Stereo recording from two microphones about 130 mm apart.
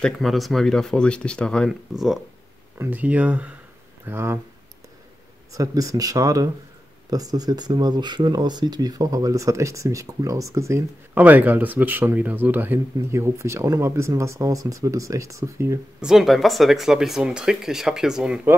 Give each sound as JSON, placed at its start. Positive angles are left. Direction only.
{"t": 0.0, "sound": "speech", "side_deg": 0}
{"t": 2.8, "sound": "speech", "side_deg": -10}
{"t": 5.5, "sound": "speech", "side_deg": -25}
{"t": 16.0, "sound": "speech", "side_deg": -5}